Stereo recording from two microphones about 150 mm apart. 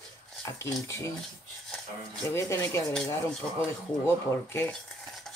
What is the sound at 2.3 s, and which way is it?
Speech, 20° left (ahead or behind).